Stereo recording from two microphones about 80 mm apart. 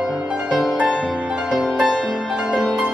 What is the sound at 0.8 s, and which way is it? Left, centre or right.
Music, centre.